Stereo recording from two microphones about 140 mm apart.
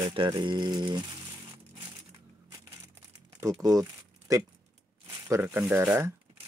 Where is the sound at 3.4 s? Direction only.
20° right (ahead or behind).